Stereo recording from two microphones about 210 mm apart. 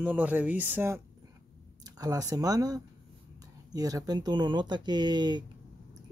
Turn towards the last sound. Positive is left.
turn(degrees=-20)  # may be behind; listen again after turning